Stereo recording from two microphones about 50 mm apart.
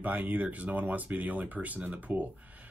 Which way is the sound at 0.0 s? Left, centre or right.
Right.